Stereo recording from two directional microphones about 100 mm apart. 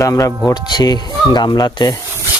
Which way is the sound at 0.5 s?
45° left (ahead or behind).